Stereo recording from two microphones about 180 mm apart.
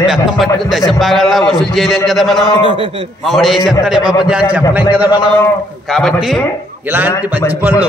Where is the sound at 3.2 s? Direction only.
Centre (ahead or behind).